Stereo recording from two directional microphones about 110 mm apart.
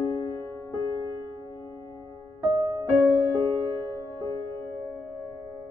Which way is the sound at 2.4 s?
35° right (ahead or behind).